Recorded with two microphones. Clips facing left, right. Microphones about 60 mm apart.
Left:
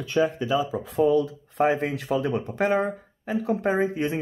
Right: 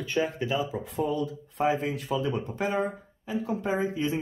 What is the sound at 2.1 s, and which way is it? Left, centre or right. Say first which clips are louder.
Speech: left 4 dB; left.